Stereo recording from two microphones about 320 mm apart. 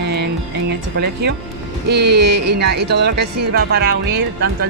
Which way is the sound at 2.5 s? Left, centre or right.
Right.